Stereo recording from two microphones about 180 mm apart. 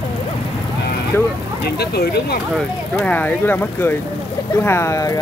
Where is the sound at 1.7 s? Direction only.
60° left (ahead or behind).